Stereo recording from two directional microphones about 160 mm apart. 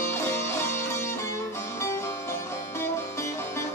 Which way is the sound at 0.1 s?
15° left (ahead or behind).